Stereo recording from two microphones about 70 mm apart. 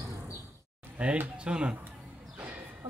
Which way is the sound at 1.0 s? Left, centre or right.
Centre.